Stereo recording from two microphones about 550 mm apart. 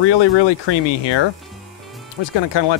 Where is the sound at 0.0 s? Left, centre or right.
Left.